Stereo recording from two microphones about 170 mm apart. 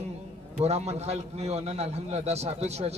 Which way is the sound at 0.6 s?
40° right (ahead or behind).